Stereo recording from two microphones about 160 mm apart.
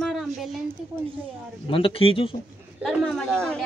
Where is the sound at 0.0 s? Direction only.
Centre (ahead or behind).